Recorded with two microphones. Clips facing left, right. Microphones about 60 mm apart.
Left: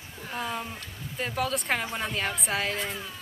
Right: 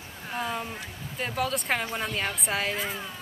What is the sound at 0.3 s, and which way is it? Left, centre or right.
Speech, centre.